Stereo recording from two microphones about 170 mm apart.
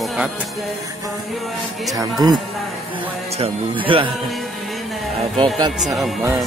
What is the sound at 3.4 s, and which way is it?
Speech, 30° right (ahead or behind).